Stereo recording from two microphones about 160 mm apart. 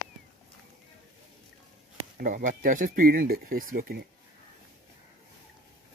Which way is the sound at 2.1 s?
60° right (ahead or behind).